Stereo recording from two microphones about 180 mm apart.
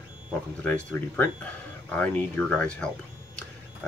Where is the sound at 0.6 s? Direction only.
10° left (ahead or behind).